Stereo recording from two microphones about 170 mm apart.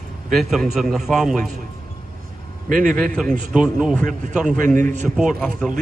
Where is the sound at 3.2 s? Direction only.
5° right (ahead or behind).